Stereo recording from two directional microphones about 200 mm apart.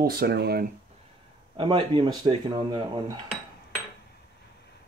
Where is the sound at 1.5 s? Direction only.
25° right (ahead or behind).